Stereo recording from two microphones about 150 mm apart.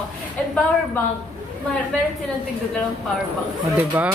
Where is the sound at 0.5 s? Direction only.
10° left (ahead or behind).